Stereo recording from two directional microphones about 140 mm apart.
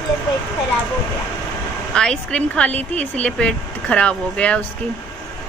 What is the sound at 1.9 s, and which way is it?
Speech, 5° left (ahead or behind).